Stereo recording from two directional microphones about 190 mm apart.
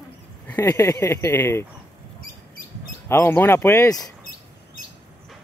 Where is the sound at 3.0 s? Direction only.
10° left (ahead or behind).